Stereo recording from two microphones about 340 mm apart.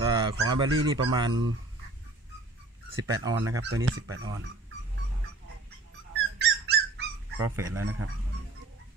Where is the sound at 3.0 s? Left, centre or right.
Centre.